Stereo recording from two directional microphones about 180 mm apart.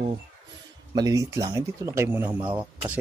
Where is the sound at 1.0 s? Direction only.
20° right (ahead or behind).